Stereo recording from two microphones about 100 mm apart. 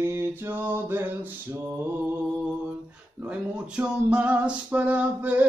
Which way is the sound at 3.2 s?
15° right (ahead or behind).